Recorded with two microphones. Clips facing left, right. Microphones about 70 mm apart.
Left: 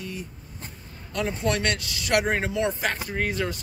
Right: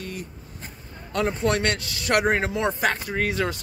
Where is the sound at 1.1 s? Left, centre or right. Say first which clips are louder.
Right 3 dB; right.